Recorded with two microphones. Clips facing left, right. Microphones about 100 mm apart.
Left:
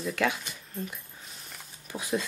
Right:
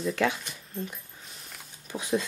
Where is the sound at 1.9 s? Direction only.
25° right (ahead or behind).